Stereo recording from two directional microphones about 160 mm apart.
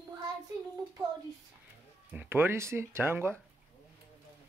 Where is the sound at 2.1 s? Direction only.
10° right (ahead or behind).